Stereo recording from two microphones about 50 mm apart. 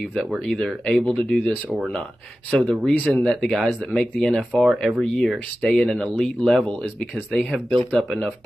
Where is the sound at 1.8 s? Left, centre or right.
Centre.